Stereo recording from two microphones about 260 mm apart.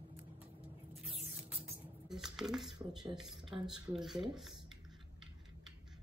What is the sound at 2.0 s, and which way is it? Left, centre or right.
Speech, centre.